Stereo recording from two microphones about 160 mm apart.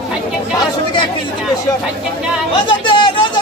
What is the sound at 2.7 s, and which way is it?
Chatter, 30° left (ahead or behind).